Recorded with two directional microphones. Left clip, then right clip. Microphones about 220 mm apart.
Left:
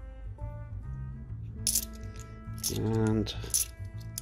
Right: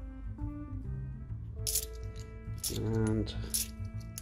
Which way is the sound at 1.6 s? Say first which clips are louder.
Left 4 dB; 15° left (ahead or behind).